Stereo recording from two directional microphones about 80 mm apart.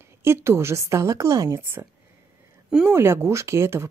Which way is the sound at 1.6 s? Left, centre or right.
Right.